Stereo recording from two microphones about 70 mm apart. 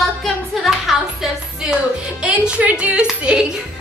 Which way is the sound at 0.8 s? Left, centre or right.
Centre.